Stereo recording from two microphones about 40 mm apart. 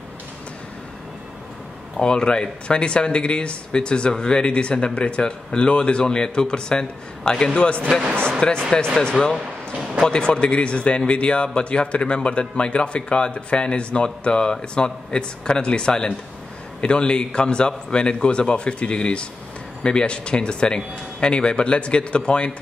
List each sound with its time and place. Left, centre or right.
2.0 s a man's voice: left
10.0 s a man's voice: left